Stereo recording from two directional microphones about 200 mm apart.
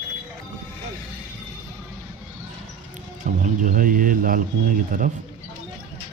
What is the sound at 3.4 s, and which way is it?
Speech, 45° right (ahead or behind).